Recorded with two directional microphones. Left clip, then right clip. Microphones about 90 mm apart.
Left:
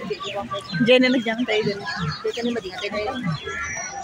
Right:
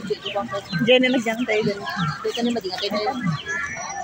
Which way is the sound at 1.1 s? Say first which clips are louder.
Even; 20° left (ahead or behind).